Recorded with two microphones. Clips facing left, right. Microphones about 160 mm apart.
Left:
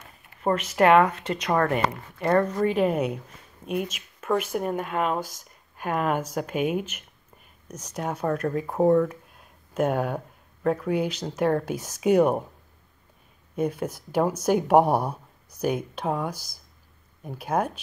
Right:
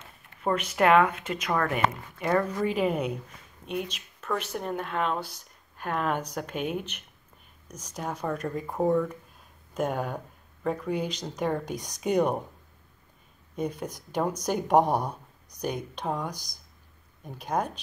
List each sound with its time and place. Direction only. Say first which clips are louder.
0.4 s speech: left 3 dB; 5° left (ahead or behind)
13.6 s speech: left 5 dB; 5° left (ahead or behind)